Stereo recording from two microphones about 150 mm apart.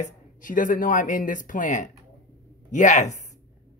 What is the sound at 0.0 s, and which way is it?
Speech, 65° left (ahead or behind).